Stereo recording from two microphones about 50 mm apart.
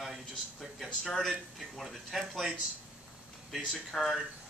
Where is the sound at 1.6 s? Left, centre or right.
Centre.